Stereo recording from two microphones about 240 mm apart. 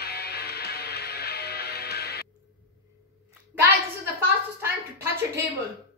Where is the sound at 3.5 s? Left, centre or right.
Centre.